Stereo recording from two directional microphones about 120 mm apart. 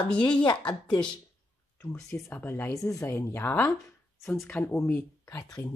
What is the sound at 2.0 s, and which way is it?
Speech, 25° left (ahead or behind).